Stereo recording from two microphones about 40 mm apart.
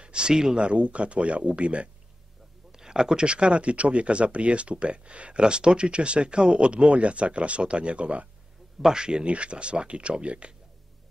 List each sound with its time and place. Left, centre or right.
0.0 s speech: right
0.6 s speech: right
2.7 s speech: centre; by 8.3 s right
8.8 s speech: centre